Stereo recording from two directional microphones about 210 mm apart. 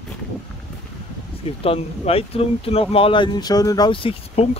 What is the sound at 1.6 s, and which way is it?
Speech, 25° left (ahead or behind).